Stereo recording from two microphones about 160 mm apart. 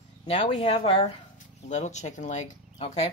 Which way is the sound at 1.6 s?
45° left (ahead or behind).